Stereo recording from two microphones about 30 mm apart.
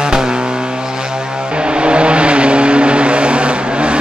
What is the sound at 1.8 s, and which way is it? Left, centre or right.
Vehicle, right.